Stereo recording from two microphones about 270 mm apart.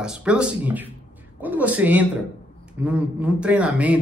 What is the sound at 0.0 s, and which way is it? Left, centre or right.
A man's voice, centre.